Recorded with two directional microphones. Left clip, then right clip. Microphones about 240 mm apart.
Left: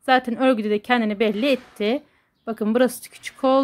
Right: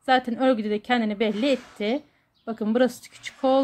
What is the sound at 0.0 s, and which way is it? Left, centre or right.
A woman's voice, centre.